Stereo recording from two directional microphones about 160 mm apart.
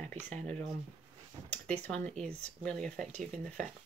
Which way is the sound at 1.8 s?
5° left (ahead or behind).